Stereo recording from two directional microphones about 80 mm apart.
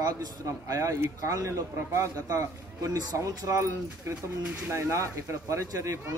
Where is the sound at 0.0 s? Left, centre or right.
Right.